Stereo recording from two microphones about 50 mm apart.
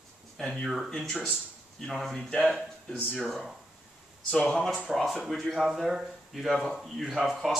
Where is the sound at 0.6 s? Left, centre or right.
Centre.